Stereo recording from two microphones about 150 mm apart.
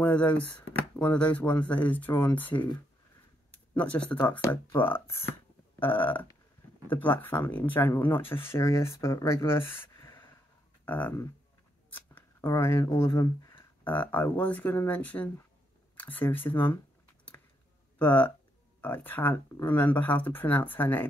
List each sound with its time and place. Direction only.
0.0 s speech: 10° left (ahead or behind)
3.7 s speech: 10° left (ahead or behind)
9.7 s a sound: 15° left (ahead or behind)
10.9 s speech: 10° left (ahead or behind)
13.8 s speech: 10° left (ahead or behind)
16.0 s a sound: 10° left (ahead or behind)
17.9 s speech: 10° left (ahead or behind)